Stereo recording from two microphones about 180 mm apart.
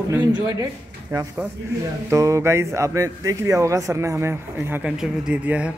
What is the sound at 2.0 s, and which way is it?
Speech, 15° right (ahead or behind).